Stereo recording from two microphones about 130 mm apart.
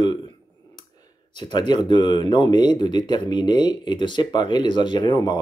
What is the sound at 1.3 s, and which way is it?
Speech, 35° left (ahead or behind).